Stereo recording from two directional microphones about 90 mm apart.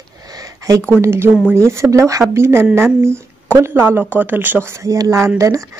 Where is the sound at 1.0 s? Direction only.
30° right (ahead or behind).